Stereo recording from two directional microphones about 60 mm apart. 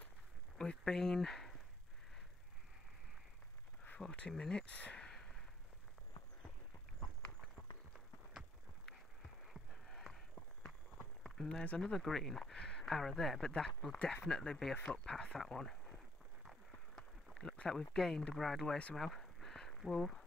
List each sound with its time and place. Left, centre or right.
0.6 s speech: centre
4.0 s speech: centre
5.0 s gasp: centre
9.5 s a sound: centre
11.4 s speech: centre
11.9 s speech: centre
16.9 s a sound: centre
17.9 s speech: centre
18.9 s a sound: centre